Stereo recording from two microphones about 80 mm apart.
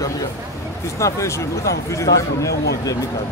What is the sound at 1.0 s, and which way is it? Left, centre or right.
Speech, left.